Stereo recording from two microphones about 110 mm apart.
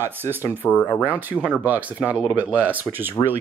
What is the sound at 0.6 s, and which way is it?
Speech, 15° left (ahead or behind).